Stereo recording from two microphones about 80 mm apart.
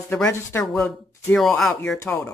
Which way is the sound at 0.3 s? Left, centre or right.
Left.